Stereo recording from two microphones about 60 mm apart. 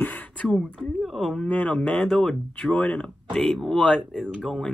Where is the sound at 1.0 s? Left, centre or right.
Centre.